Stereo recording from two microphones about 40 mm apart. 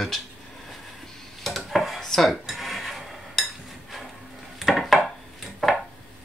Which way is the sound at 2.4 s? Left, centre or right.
Centre.